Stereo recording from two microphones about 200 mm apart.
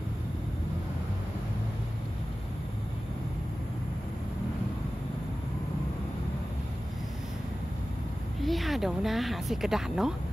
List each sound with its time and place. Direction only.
8.4 s speech: centre (ahead or behind)